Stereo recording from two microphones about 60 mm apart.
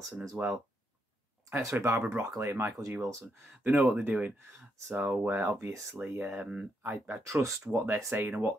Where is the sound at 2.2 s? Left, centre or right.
Right.